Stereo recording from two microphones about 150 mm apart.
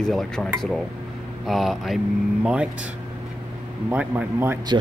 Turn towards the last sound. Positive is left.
turn(degrees=-15)  # may be behind; listen again after turning